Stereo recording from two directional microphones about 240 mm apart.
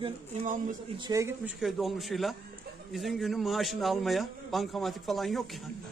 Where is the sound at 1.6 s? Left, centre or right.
Centre.